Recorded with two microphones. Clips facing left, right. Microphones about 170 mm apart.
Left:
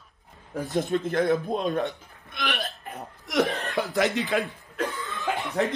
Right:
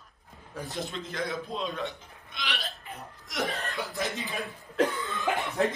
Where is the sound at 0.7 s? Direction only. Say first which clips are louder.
Left 11 dB; 60° left (ahead or behind).